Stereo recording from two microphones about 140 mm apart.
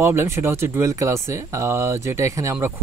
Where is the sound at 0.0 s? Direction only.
20° right (ahead or behind).